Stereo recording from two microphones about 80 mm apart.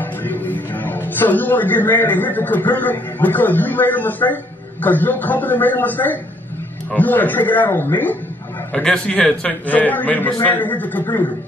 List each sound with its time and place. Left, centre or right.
0.0 s a man's voice: left
8.8 s a man's voice: centre